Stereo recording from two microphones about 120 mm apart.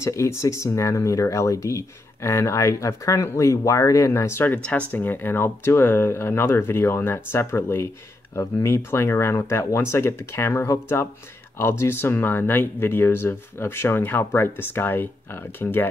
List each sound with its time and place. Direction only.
0.0 s speech: 25° left (ahead or behind)